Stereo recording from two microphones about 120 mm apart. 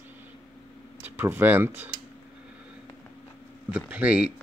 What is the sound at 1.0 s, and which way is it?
Speech, 15° right (ahead or behind).